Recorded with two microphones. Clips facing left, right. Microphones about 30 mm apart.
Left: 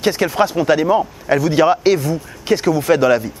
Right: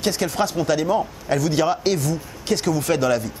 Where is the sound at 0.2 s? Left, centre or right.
Left.